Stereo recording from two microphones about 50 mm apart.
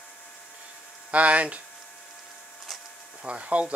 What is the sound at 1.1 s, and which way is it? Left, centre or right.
Speech, right.